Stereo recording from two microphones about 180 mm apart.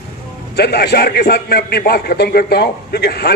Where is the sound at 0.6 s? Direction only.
60° left (ahead or behind).